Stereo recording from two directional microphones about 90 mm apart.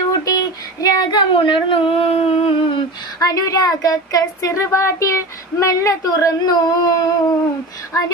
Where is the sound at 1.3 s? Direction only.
70° left (ahead or behind).